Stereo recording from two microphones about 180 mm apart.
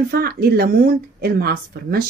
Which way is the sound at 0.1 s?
55° right (ahead or behind).